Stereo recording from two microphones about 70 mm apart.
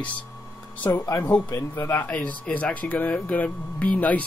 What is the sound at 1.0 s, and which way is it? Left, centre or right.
Speech, left.